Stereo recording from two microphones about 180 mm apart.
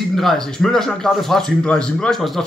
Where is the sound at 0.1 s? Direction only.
Centre (ahead or behind).